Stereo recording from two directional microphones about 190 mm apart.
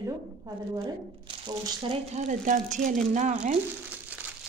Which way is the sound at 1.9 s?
40° right (ahead or behind).